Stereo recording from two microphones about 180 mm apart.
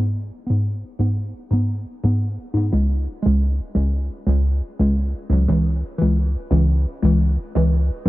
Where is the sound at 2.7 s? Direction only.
Centre (ahead or behind).